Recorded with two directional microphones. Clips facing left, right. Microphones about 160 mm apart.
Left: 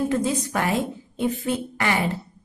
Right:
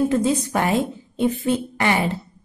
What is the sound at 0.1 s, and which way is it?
A woman's voice, 25° right (ahead or behind).